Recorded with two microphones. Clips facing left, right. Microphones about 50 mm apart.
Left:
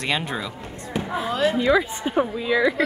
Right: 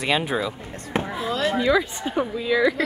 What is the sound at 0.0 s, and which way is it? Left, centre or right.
Speech, centre.